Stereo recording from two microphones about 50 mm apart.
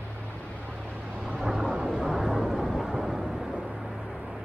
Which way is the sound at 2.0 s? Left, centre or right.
Centre.